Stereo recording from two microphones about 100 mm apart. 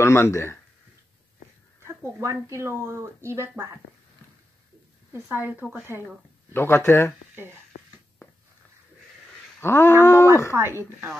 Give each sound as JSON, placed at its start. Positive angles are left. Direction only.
{"t": 0.0, "sound": "speech", "side_deg": 25}
{"t": 1.9, "sound": "speech", "side_deg": -30}
{"t": 5.1, "sound": "a woman's voice", "side_deg": -20}
{"t": 6.5, "sound": "speech", "side_deg": 25}
{"t": 9.6, "sound": "speech", "side_deg": 25}
{"t": 10.5, "sound": "speech", "side_deg": -25}